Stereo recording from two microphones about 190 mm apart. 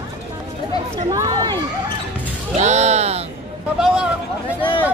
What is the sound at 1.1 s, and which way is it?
Speech, 20° right (ahead or behind).